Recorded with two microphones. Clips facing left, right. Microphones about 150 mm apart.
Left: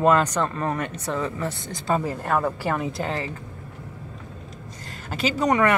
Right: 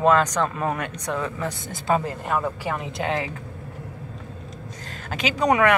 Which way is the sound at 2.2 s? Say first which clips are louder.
Left 2 dB; 15° right (ahead or behind).